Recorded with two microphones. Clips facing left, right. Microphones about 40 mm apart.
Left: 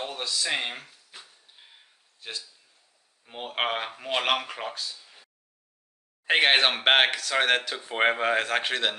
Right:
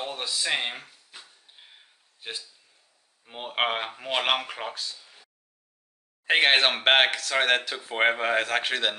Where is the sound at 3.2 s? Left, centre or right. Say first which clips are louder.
Right 2 dB; centre.